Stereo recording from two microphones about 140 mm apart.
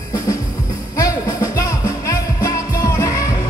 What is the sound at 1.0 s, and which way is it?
Music, 25° left (ahead or behind).